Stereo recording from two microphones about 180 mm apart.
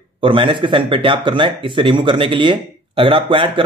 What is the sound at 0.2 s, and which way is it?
Speech, 30° right (ahead or behind).